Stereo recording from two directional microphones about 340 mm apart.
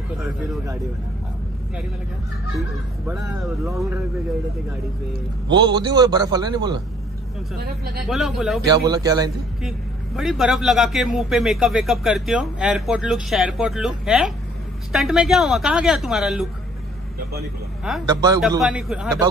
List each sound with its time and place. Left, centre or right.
3.1 s a man's voice: centre
5.5 s a man's voice: centre
7.5 s speech: right
8.1 s a man's voice: centre
8.6 s a man's voice: centre
18.0 s a man's voice: centre